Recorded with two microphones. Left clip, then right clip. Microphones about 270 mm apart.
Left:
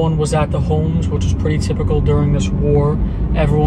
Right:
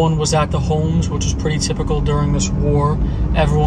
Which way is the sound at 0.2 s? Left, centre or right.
Centre.